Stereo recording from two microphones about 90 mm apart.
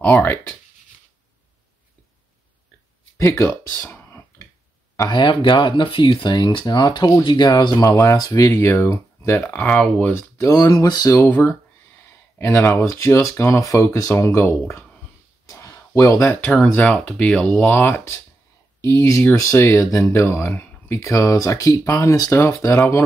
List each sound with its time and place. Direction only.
0.0 s speech: 20° left (ahead or behind)
3.2 s speech: 30° left (ahead or behind)
5.1 s speech: 60° left (ahead or behind); by 8.6 s 40° left (ahead or behind)
8.6 s speech: 25° left (ahead or behind)
10.3 s speech: 35° left (ahead or behind)
10.6 s speech: 45° left (ahead or behind)
11.1 s speech: 20° left (ahead or behind)
15.4 s a sound: 35° left (ahead or behind)
16.4 s speech: 10° left (ahead or behind)
18.9 s speech: 35° left (ahead or behind)
21.0 s speech: 35° left (ahead or behind)